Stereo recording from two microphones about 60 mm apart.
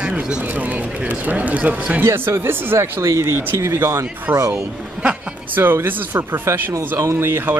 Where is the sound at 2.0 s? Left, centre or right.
Right.